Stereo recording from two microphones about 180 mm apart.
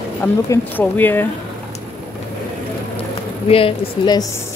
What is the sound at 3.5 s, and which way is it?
Speech, 25° left (ahead or behind).